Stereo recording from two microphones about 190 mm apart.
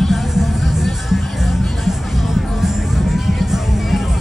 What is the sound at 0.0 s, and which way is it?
Music, centre (ahead or behind).